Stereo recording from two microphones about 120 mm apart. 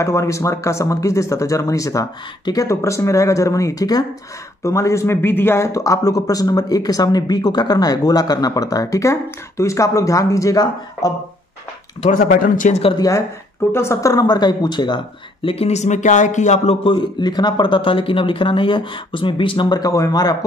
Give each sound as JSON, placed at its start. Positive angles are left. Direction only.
{"t": 0.0, "sound": "speech", "side_deg": 25}
{"t": 12.0, "sound": "speech", "side_deg": 90}
{"t": 12.9, "sound": "speech", "side_deg": 30}
{"t": 15.4, "sound": "speech", "side_deg": 55}
{"t": 16.8, "sound": "speech", "side_deg": 40}